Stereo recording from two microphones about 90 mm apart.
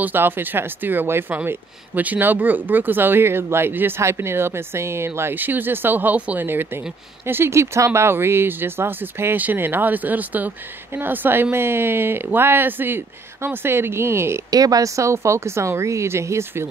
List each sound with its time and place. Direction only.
0.0 s speech: 20° right (ahead or behind)
14.5 s speech: 45° right (ahead or behind)